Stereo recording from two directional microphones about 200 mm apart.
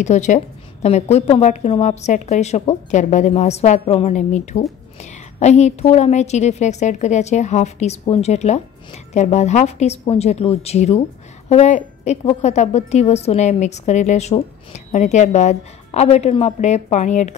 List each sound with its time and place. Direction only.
0.0 s a woman's voice: 35° left (ahead or behind)